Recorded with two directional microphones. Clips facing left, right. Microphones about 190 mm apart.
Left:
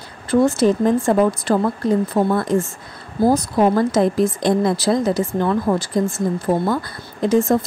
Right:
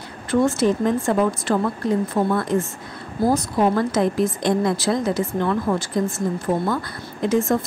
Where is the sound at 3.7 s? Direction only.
35° left (ahead or behind).